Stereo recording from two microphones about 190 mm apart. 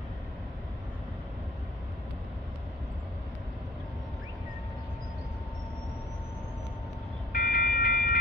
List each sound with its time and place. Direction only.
7.3 s train: 45° left (ahead or behind)